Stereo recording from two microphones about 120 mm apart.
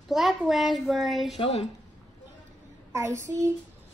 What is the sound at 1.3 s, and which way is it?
Speech, 50° left (ahead or behind).